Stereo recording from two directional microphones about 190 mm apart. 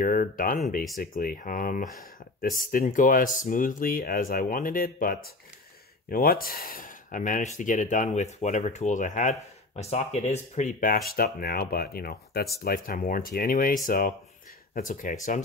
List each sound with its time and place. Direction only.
0.0 s speech: 45° left (ahead or behind)